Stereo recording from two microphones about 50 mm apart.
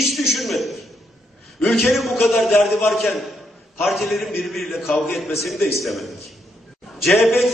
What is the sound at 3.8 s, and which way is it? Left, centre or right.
A man's voice, centre.